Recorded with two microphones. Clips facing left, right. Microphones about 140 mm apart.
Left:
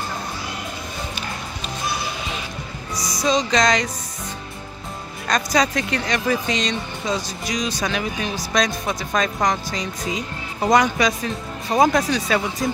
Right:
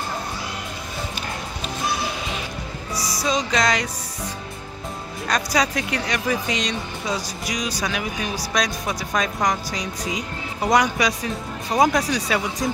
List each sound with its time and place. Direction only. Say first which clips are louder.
2.9 s music: even; 30° right (ahead or behind)
3.2 s speech: left 3 dB; 10° right (ahead or behind)
5.3 s speech: left 2 dB; 10° right (ahead or behind)